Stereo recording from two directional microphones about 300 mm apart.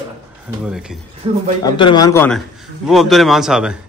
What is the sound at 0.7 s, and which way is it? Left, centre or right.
Speech, centre.